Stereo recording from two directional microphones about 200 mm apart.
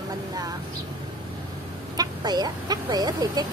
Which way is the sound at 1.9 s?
20° right (ahead or behind).